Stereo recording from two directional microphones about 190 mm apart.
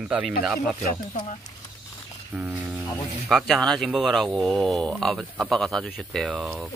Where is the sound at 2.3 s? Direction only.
5° right (ahead or behind).